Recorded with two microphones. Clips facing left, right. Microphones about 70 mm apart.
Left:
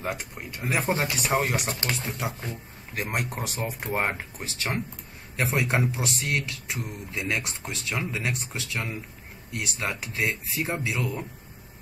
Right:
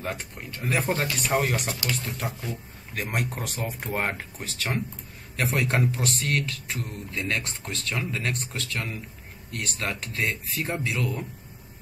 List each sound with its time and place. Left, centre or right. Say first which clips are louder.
0.0 s speech: left 1 dB; centre
1.7 s speech: even; left
2.0 s speech: left 1 dB; centre